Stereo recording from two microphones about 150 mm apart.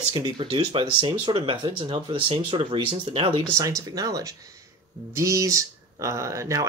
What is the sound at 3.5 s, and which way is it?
Speech, 20° right (ahead or behind).